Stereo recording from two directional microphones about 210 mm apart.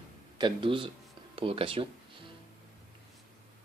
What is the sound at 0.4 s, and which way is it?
Speech, 25° right (ahead or behind).